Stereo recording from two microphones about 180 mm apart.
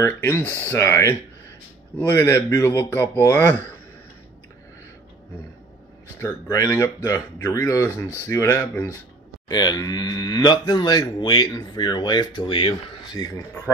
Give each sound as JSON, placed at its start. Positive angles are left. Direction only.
{"t": 0.0, "sound": "speech", "side_deg": 15}
{"t": 6.1, "sound": "speech", "side_deg": 15}
{"t": 9.5, "sound": "speech", "side_deg": 25}